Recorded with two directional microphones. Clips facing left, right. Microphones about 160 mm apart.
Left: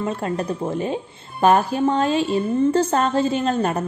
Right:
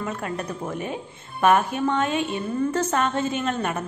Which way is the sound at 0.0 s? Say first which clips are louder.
Left 5 dB; 30° left (ahead or behind).